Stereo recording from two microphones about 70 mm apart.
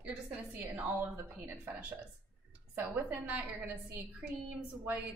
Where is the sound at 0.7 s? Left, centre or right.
Right.